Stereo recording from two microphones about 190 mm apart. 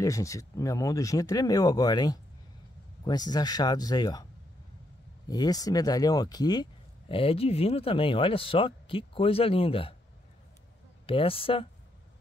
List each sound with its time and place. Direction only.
0.0 s speech: 15° left (ahead or behind)
5.3 s speech: 20° left (ahead or behind)
11.1 s speech: 30° left (ahead or behind)